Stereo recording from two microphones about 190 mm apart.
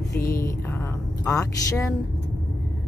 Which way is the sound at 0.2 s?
15° left (ahead or behind).